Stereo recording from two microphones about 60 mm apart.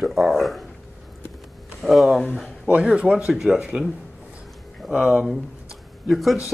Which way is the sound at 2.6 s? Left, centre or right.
Right.